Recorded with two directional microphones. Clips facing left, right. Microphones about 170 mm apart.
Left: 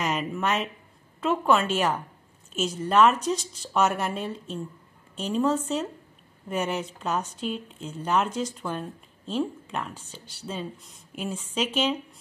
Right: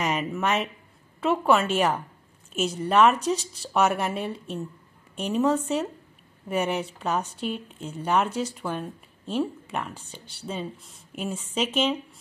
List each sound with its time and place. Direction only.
0.0 s speech: 5° right (ahead or behind)